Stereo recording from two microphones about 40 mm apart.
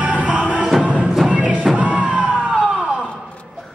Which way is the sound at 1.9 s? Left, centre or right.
Centre.